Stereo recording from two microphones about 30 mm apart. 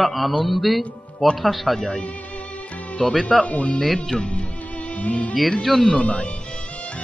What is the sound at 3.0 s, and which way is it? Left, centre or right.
Speech, left.